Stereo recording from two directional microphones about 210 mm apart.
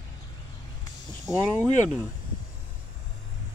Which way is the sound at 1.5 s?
10° right (ahead or behind).